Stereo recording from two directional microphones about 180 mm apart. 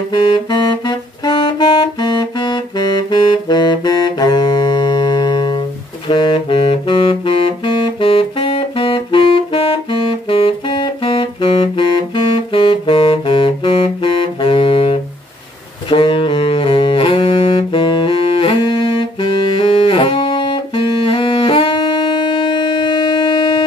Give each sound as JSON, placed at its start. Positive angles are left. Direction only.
{"t": 0.1, "sound": "music", "side_deg": 25}
{"t": 15.9, "sound": "saxophone", "side_deg": 30}